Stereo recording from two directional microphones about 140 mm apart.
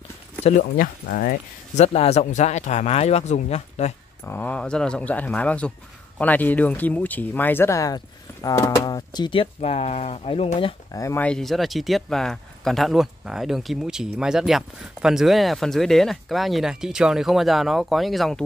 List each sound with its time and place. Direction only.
0.4 s speech: 50° left (ahead or behind)
0.7 s speech: 90° left
1.8 s speech: 50° left (ahead or behind)
4.2 s speech: 15° left (ahead or behind); by 10.7 s 45° left (ahead or behind)
10.9 s speech: 25° left (ahead or behind)
11.1 s speech: 5° left (ahead or behind)